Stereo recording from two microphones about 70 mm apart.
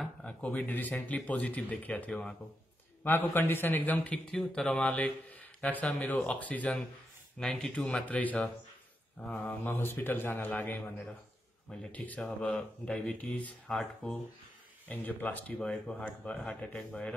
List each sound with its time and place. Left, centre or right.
0.2 s a man's voice: centre
7.3 s speech: centre
8.1 s a man's voice: left
9.2 s speech: centre
9.5 s a man's voice: left
11.9 s a man's voice: left
13.7 s speech: centre
14.9 s a man's voice: left